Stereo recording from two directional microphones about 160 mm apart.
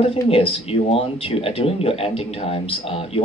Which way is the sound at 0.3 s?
35° left (ahead or behind).